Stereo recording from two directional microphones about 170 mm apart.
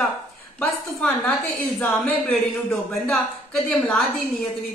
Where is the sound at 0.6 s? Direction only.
10° left (ahead or behind).